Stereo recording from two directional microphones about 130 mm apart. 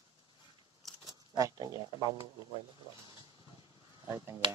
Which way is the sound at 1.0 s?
30° right (ahead or behind).